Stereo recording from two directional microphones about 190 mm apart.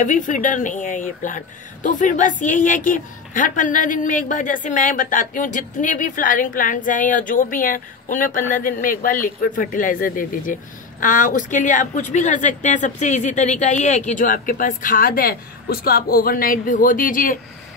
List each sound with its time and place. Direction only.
0.0 s a woman's voice: 40° left (ahead or behind)